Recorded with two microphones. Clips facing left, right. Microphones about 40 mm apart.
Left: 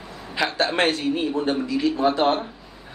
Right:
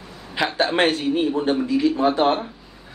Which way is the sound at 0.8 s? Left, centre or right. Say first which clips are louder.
Right 3 dB; right.